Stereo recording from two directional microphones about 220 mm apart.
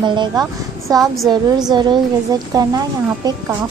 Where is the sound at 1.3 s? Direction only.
20° right (ahead or behind).